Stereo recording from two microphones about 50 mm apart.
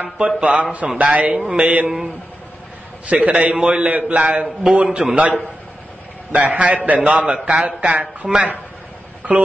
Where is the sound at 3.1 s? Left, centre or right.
Right.